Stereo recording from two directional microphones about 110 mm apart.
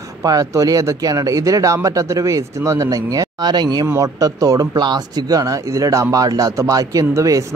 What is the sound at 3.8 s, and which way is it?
Speech, 30° right (ahead or behind).